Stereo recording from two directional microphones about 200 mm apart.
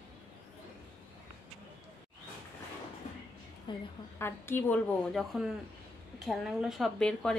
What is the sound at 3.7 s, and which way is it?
Speech, 25° left (ahead or behind).